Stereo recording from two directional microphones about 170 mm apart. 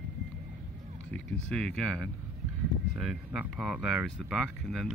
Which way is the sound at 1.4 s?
5° left (ahead or behind).